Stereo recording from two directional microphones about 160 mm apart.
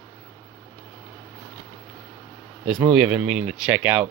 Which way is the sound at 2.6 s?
5° right (ahead or behind).